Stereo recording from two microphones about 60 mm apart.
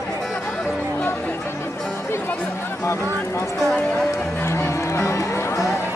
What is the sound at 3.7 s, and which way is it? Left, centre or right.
Speech, centre.